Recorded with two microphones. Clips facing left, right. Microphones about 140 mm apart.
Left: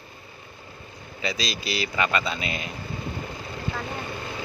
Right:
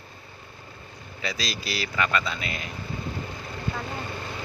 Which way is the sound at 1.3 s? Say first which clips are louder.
Left 1 dB; 15° left (ahead or behind).